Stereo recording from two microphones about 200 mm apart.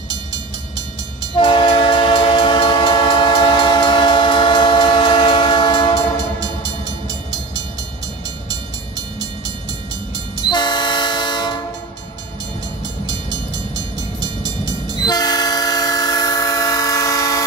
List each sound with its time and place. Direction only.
0.1 s train: 20° right (ahead or behind)
1.3 s train: 25° left (ahead or behind)
8.5 s train: 20° right (ahead or behind)
10.4 s train: 20° left (ahead or behind)
13.0 s train: 20° right (ahead or behind)
15.0 s train: 20° left (ahead or behind)